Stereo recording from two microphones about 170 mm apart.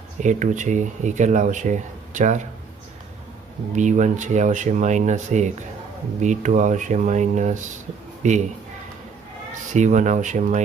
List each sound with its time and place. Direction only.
0.2 s speech: 45° right (ahead or behind)
3.7 s speech: 45° right (ahead or behind)
9.5 s speech: 45° right (ahead or behind)